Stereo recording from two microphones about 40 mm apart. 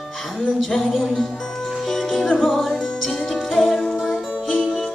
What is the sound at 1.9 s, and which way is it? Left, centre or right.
Music, centre.